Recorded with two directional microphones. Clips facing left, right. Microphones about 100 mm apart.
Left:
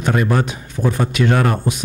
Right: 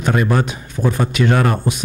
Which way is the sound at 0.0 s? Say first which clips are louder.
Even; 20° right (ahead or behind).